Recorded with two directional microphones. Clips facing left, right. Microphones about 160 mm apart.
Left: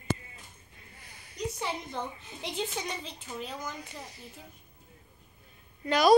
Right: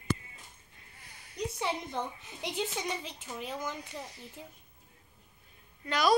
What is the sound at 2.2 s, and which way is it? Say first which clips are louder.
Speech: even; 5° right (ahead or behind).